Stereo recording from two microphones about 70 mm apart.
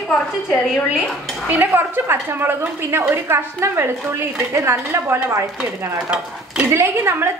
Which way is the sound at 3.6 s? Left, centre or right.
Right.